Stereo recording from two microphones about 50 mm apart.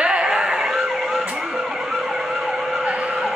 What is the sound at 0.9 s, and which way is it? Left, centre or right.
Emergency vehicle, centre.